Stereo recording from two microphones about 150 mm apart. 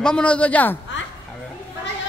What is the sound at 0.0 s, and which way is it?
Speech, 5° left (ahead or behind).